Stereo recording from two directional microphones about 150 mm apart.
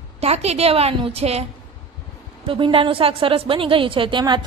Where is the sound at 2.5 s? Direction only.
35° right (ahead or behind).